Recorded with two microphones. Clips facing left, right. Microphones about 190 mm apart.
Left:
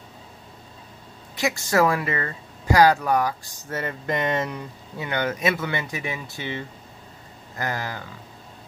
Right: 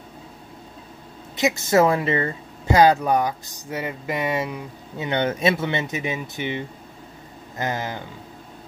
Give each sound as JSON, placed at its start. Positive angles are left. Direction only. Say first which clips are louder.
{"t": 1.3, "sound": "speech", "louder": "right 4 dB", "side_deg": -20}
{"t": 4.9, "sound": "speech", "louder": "right 3 dB", "side_deg": -25}